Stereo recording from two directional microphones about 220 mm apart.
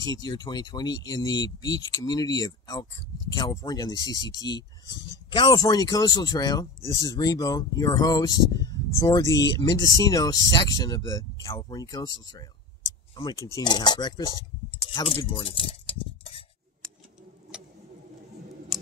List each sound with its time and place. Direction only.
0.0 s speech: 15° left (ahead or behind)
17.5 s vehicle: 5° right (ahead or behind)